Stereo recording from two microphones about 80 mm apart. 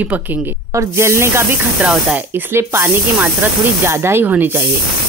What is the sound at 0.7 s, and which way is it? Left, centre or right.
Speech, right.